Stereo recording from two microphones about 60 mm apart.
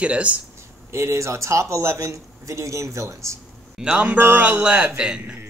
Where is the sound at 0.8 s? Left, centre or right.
Right.